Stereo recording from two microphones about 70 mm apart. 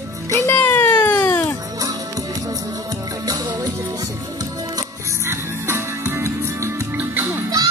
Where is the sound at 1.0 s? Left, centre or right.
Left.